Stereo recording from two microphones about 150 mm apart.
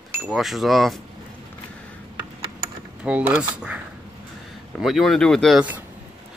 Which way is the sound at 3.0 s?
10° right (ahead or behind).